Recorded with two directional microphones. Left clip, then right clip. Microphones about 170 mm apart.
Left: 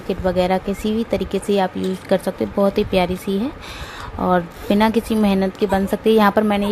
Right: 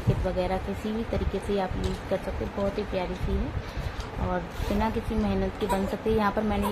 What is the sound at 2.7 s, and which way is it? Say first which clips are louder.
Speech: left 12 dB; 70° left (ahead or behind).